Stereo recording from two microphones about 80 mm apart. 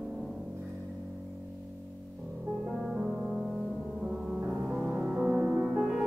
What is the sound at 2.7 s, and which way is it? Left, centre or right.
Music, centre.